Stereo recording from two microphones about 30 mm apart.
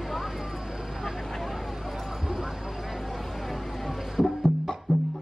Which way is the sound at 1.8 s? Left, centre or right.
Centre.